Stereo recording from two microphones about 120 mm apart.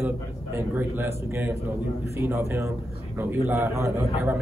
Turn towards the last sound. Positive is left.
turn(degrees=-20)  # may be behind; listen again after turning